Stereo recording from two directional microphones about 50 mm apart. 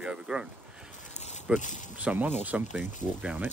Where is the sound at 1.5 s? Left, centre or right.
Right.